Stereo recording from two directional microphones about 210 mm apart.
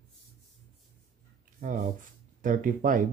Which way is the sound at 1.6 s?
40° right (ahead or behind).